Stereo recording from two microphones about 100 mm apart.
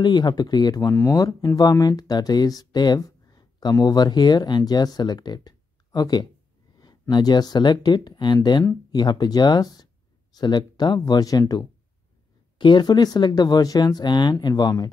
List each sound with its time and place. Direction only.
0.0 s speech: 45° left (ahead or behind)
12.5 s speech: 50° left (ahead or behind)